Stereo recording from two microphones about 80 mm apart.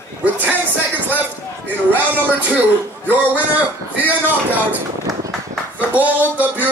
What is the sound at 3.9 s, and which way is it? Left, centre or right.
Music, right.